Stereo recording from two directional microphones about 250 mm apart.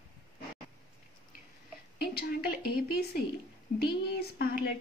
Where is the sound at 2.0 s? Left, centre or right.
Left.